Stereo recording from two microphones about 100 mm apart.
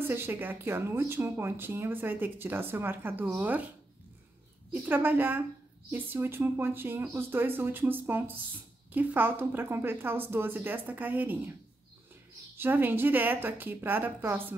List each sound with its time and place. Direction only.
0.0 s speech: 20° right (ahead or behind)
4.8 s speech: 20° right (ahead or behind)
12.5 s speech: 20° right (ahead or behind)